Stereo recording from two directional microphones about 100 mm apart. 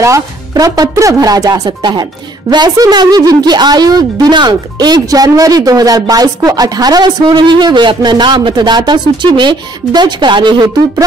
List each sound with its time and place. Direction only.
0.0 s a woman's voice: 35° right (ahead or behind); by 10.7 s 50° right (ahead or behind)